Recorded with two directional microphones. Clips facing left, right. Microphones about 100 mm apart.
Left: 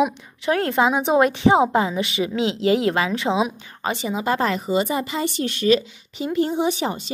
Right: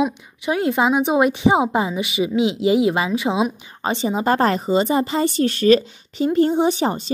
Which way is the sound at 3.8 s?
30° right (ahead or behind).